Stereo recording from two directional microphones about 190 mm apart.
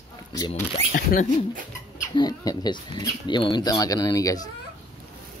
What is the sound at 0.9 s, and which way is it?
Speech, 45° left (ahead or behind).